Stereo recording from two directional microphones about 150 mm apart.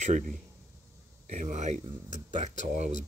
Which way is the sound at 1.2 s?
55° right (ahead or behind).